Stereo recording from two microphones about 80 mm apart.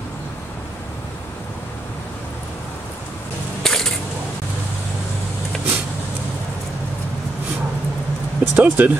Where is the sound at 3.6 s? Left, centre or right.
Centre.